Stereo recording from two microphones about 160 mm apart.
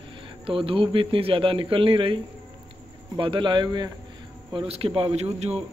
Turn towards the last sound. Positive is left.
turn(degrees=-40)  # may be behind; listen again after turning